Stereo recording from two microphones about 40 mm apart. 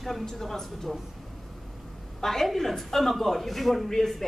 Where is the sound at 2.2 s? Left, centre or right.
Centre.